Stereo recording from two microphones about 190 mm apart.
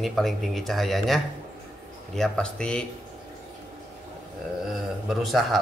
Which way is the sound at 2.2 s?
5° left (ahead or behind).